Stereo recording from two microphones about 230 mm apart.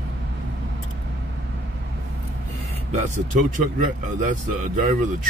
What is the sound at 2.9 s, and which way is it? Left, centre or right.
Speech, right.